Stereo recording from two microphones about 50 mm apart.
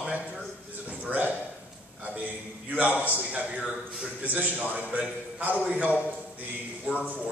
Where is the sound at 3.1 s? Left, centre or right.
Right.